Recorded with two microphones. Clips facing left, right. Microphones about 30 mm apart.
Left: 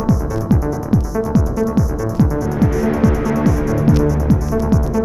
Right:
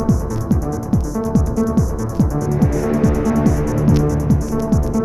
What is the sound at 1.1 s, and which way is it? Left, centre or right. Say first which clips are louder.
Music: left 1 dB; left.